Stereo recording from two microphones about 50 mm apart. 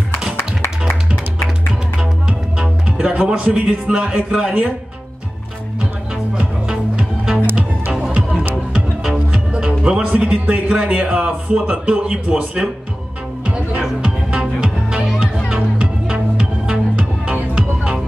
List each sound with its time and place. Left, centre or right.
0.4 s music: left
2.0 s music: centre
6.3 s music: centre
8.7 s music: centre
9.5 s speech: centre
14.3 s music: centre